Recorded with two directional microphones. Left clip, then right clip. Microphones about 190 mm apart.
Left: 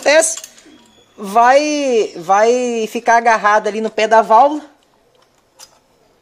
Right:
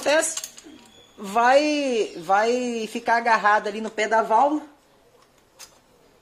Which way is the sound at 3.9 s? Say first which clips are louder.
Left 10 dB; 55° left (ahead or behind).